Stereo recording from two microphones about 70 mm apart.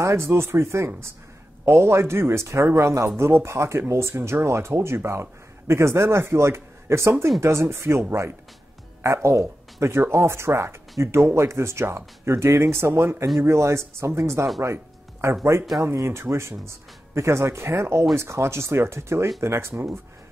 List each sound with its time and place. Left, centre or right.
0.0 s speech: right
15.8 s speech: right